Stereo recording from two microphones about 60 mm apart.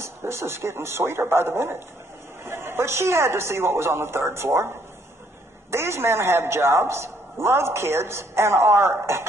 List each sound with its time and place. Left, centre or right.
0.0 s a man's voice: right
5.7 s a man's voice: right